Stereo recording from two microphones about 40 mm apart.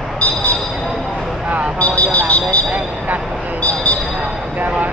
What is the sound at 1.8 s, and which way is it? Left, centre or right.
Vehicle, left.